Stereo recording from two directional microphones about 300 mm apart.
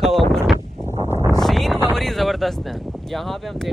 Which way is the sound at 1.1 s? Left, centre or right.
Centre.